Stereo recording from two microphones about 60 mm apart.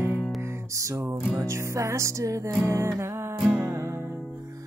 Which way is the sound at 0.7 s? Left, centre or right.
Right.